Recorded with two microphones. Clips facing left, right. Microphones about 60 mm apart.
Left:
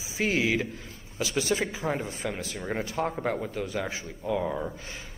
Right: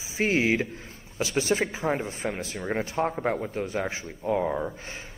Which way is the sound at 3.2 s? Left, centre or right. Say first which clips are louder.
Right 2 dB; centre.